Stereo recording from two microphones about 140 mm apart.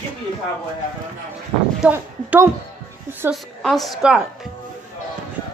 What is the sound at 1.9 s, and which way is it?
Speech, 20° right (ahead or behind).